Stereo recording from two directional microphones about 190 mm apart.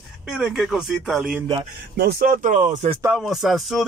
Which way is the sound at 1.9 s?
55° right (ahead or behind).